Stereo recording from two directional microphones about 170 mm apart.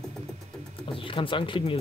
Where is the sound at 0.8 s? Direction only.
30° left (ahead or behind).